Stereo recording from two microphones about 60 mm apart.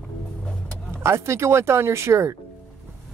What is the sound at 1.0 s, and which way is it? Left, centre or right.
Speech, right.